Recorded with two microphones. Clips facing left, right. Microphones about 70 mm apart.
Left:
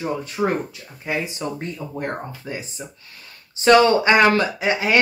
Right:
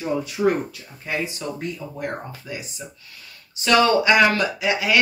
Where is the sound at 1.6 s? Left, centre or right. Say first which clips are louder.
Left 1 dB; left.